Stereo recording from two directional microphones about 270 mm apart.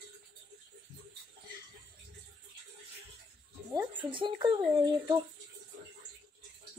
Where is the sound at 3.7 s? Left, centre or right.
Centre.